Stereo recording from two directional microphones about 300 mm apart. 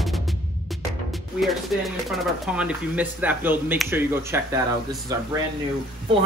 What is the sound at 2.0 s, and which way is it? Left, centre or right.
A woman's voice, centre.